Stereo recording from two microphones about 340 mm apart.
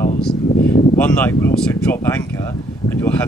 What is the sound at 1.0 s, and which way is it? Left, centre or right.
Speech, centre.